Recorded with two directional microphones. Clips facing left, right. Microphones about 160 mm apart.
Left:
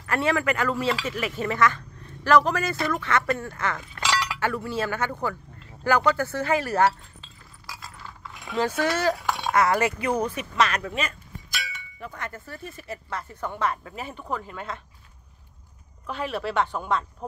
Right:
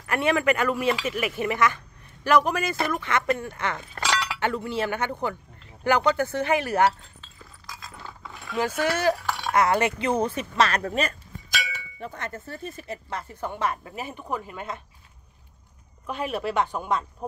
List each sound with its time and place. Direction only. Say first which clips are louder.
0.0 s speech: right 1 dB; 20° right (ahead or behind)
8.8 s speech: right 2 dB; 15° right (ahead or behind)
9.2 s a sound: left 2 dB; 15° left (ahead or behind)
9.5 s speech: even; 20° right (ahead or behind); by 11.1 s 40° right (ahead or behind)
12.0 s speech: right 1 dB; 30° right (ahead or behind)
16.1 s speech: right 1 dB; 15° right (ahead or behind)